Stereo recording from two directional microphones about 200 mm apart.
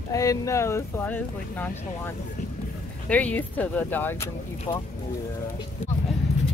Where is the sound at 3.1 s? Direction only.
5° left (ahead or behind).